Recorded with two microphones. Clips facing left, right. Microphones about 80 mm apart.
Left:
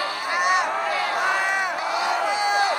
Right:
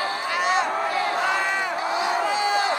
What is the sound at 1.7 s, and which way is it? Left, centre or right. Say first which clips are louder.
Battle cry: even; right.